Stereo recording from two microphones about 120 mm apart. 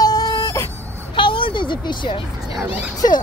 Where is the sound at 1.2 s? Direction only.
45° left (ahead or behind).